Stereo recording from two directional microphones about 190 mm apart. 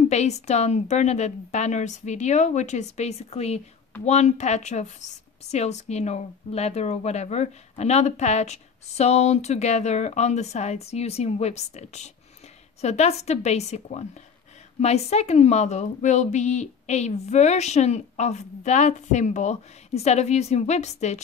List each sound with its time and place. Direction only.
0.1 s speech: 35° left (ahead or behind)